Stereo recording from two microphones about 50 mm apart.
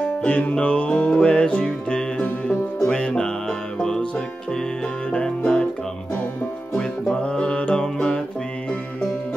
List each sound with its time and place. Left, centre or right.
0.0 s music: left; by 4.0 s centre
5.1 s music: left
6.7 s music: centre